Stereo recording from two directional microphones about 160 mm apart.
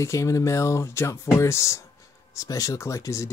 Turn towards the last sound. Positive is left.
turn(degrees=20)  # may be behind; listen again after turning